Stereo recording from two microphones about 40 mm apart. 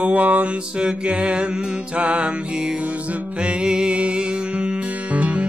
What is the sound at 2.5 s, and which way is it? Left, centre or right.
Music, centre.